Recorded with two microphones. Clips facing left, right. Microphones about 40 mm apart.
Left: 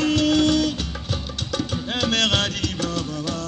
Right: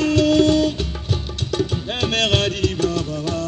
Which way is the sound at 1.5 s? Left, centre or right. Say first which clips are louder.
Right 4 dB; right.